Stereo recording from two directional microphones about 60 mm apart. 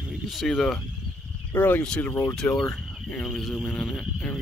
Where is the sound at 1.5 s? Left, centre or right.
Left.